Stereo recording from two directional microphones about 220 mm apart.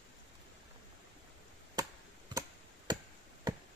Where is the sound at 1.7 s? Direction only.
20° right (ahead or behind).